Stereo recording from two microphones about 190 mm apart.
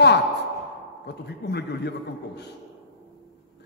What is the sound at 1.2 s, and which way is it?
Speech, 60° left (ahead or behind).